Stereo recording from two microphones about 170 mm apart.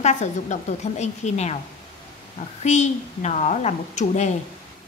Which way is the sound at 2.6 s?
45° left (ahead or behind).